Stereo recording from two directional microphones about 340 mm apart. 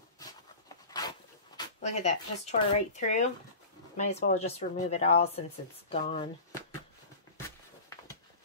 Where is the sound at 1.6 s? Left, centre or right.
Centre.